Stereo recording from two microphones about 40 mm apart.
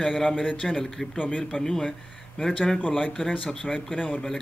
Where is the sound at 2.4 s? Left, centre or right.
Left.